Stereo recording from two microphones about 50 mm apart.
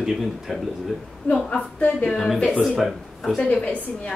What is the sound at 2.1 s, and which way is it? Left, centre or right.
Speech, centre.